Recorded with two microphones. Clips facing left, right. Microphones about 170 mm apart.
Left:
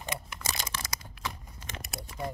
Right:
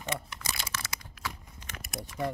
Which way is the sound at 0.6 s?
40° left (ahead or behind).